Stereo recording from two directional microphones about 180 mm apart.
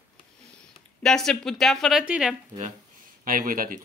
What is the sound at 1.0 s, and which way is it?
Speech, 5° left (ahead or behind).